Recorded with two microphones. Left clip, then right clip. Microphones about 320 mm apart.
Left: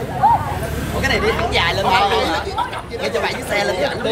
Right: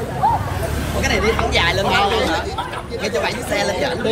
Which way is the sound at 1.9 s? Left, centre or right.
Left.